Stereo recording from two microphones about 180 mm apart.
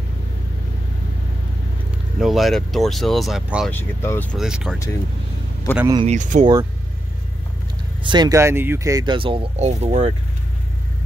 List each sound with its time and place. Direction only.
2.1 s speech: centre (ahead or behind)
3.7 s speech: 10° left (ahead or behind)
4.4 s speech: 5° right (ahead or behind)
5.7 s speech: 10° left (ahead or behind)
6.0 s speech: 45° right (ahead or behind)
8.0 s speech: 25° right (ahead or behind)